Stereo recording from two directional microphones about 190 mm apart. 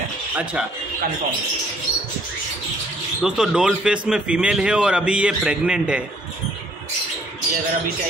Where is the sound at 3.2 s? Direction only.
5° right (ahead or behind).